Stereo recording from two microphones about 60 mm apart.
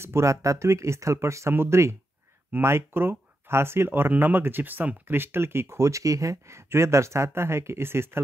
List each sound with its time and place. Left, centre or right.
0.0 s speech: right